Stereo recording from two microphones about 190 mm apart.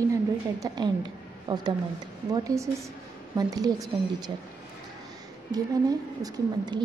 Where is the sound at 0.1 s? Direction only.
20° right (ahead or behind).